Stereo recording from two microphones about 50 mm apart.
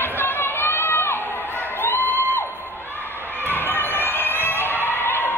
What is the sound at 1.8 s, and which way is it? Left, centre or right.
Crowd, left.